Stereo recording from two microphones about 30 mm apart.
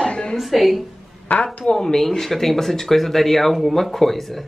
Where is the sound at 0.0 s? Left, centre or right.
Left.